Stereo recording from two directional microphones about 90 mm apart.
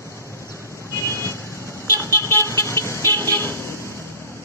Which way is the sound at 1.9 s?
30° left (ahead or behind).